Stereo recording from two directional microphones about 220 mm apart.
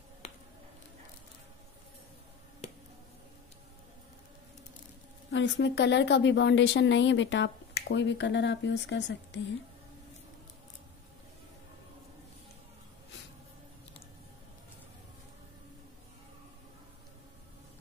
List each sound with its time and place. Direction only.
5.3 s speech: 55° left (ahead or behind)